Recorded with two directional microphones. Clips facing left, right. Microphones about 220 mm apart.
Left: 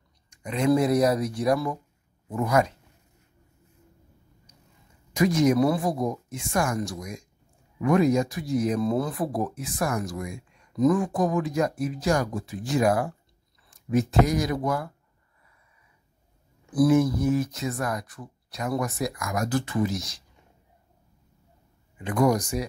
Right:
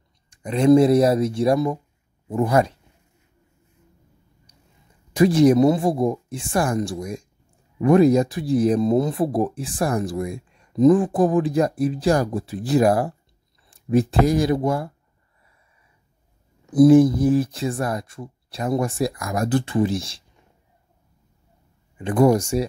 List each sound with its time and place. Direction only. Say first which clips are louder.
0.3 s speech: right 7 dB; 30° right (ahead or behind)
5.1 s speech: right 6 dB; 30° right (ahead or behind)
16.7 s speech: right 8 dB; 30° right (ahead or behind)
21.9 s speech: right 6 dB; 30° right (ahead or behind)